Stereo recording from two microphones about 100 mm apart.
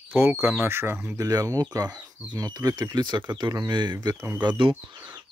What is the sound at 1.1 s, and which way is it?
Speech, 35° right (ahead or behind).